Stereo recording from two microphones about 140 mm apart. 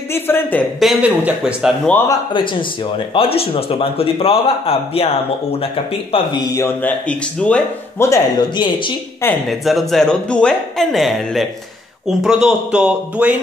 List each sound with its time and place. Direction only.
0.1 s speech: 15° left (ahead or behind)
0.7 s speech: 5° right (ahead or behind)
2.0 s speech: 35° left (ahead or behind)
6.1 s speech: 30° left (ahead or behind)
6.6 s speech: 10° left (ahead or behind)
8.1 s speech: 30° left (ahead or behind)
9.5 s speech: centre (ahead or behind)